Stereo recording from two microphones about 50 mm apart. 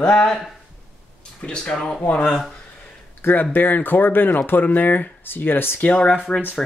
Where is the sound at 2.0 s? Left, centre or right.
Left.